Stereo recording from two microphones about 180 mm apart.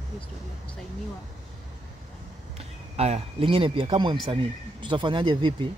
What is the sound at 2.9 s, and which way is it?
Speech, 35° right (ahead or behind).